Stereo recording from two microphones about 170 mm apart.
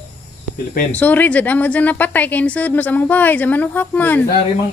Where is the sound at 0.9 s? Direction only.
10° left (ahead or behind).